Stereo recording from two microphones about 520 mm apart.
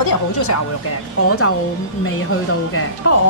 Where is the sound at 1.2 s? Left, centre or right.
Left.